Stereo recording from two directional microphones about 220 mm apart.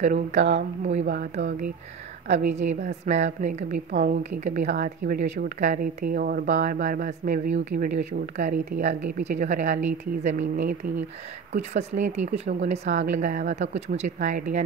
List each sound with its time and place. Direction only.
0.0 s a woman's voice: 35° right (ahead or behind)
1.0 s speech: 45° right (ahead or behind)
2.2 s a woman's voice: 30° right (ahead or behind)